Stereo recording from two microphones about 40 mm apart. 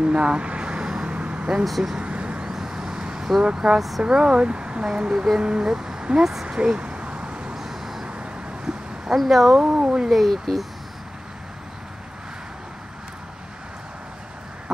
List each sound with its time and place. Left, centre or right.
0.0 s vehicle: right
1.6 s speech: centre
2.0 s vehicle: right
2.4 s vehicle: centre
3.5 s speech: centre
6.4 s a sound: right
7.5 s vehicle: centre
9.1 s speech: centre
9.6 s speech: centre
10.0 s speech: centre